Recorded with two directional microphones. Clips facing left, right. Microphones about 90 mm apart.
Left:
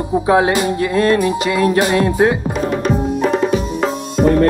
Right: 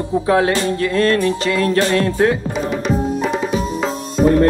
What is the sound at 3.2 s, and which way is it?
Music, centre (ahead or behind).